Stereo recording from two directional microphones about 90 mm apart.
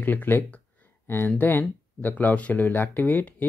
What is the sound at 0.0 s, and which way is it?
Speech, 20° left (ahead or behind).